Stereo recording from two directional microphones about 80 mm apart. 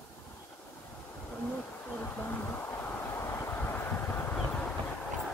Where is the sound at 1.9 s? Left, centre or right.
Left.